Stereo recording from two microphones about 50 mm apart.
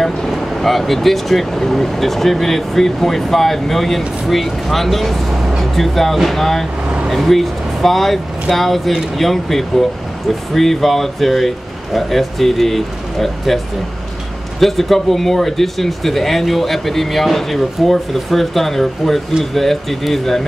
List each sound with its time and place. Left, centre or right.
0.0 s speech: centre
14.6 s speech: centre